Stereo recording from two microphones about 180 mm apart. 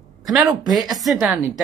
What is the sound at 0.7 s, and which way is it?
Speech, centre (ahead or behind).